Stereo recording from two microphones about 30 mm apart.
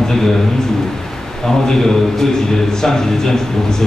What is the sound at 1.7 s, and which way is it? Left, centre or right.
A man's voice, centre.